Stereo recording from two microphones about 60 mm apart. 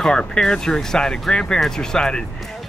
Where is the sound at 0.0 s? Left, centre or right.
Centre.